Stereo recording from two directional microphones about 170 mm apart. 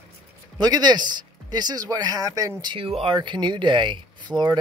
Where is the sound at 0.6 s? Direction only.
25° right (ahead or behind).